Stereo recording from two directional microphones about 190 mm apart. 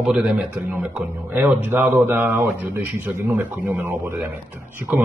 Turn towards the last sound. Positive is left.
turn(degrees=-10)  # may be behind; listen again after turning